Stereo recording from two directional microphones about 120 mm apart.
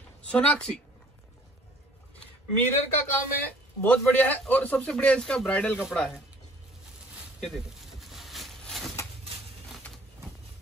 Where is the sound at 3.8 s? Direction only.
15° left (ahead or behind).